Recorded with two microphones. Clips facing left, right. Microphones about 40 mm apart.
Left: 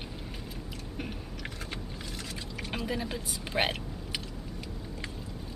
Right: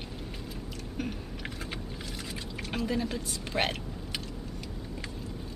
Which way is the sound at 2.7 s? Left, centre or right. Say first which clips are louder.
Right 3 dB; centre.